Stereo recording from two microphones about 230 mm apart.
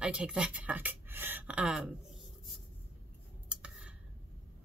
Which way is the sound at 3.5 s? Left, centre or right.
Centre.